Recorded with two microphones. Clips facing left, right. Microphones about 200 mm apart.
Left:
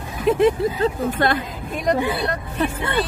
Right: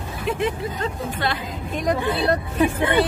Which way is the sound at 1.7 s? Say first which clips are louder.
Left 2 dB; 5° left (ahead or behind).